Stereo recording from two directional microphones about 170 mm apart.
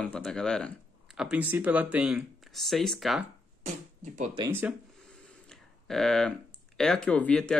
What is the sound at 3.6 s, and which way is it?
Speech, 45° right (ahead or behind).